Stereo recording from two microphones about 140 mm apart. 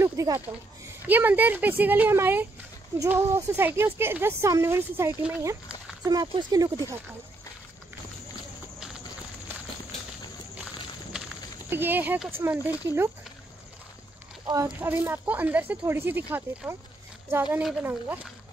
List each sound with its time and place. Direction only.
0.0 s a sound: 20° right (ahead or behind)
1.0 s speech: 15° right (ahead or behind)
6.2 s speech: 30° right (ahead or behind)
11.7 s speech: 15° right (ahead or behind)
14.7 s speech: 15° right (ahead or behind)